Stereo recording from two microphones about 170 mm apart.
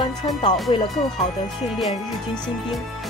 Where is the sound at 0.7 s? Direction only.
30° left (ahead or behind).